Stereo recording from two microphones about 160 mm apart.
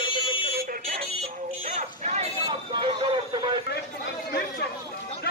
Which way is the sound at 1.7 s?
45° right (ahead or behind).